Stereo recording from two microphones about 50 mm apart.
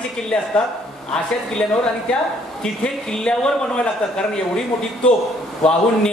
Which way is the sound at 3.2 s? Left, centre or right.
Centre.